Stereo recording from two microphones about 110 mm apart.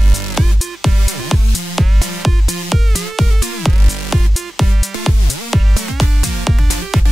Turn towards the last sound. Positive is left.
turn(degrees=0)  # may be behind; listen again after turning